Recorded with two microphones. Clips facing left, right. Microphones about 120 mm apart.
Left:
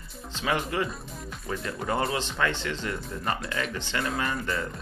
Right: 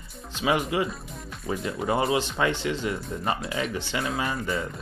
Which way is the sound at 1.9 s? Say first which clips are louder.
Right 4 dB; 10° right (ahead or behind).